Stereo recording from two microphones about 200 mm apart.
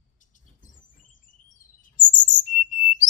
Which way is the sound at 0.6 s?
40° left (ahead or behind).